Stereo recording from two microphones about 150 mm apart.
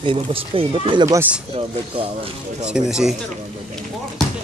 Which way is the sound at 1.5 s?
40° right (ahead or behind).